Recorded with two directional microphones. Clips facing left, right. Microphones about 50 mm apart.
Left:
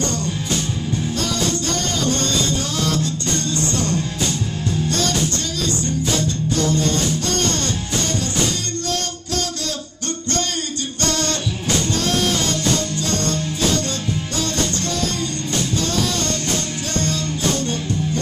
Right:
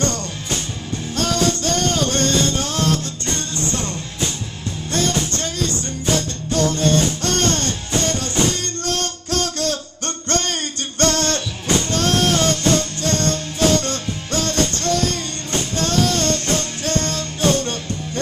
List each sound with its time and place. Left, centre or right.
1.1 s music: right
3.3 s music: right
5.6 s music: right
11.0 s music: right